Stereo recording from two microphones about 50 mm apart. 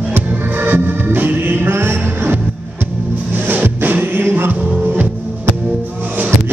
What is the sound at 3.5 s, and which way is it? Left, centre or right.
Music, right.